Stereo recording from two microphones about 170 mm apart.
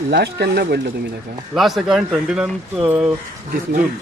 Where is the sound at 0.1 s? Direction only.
75° right (ahead or behind).